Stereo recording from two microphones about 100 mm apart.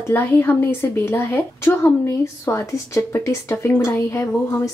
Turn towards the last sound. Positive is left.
turn(degrees=30)  # may be behind; listen again after turning